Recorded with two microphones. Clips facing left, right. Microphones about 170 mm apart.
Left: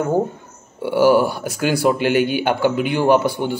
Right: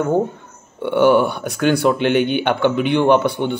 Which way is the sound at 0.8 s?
5° left (ahead or behind).